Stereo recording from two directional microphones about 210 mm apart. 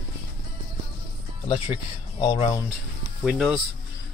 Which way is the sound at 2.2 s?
20° left (ahead or behind).